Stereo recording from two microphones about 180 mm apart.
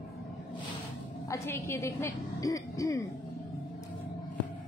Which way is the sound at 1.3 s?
15° left (ahead or behind).